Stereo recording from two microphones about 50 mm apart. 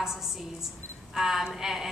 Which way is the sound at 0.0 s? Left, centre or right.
Centre.